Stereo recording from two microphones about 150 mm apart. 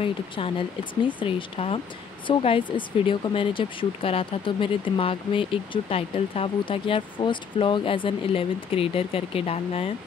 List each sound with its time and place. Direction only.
0.0 s speech: 35° left (ahead or behind)